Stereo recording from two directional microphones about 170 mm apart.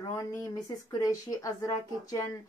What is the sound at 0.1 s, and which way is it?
A woman's voice, 15° left (ahead or behind).